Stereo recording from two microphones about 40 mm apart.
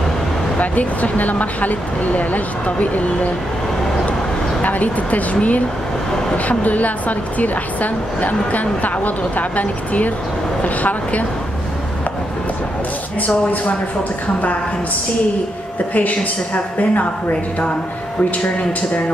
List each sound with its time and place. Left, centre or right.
0.6 s speech: left
4.6 s speech: left
13.3 s speech: left
15.9 s speech: left